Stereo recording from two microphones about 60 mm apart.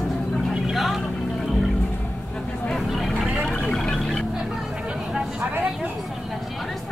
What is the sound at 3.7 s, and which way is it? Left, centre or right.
Music, centre.